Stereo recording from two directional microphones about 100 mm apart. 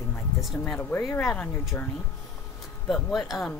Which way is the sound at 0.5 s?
15° left (ahead or behind).